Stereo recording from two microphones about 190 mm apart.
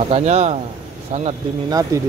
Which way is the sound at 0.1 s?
35° right (ahead or behind).